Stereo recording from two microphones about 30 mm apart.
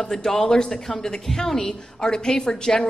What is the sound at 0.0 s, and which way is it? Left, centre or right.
A woman's voice, centre.